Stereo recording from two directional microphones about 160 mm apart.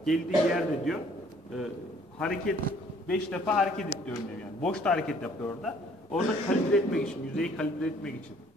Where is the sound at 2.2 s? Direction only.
5° left (ahead or behind).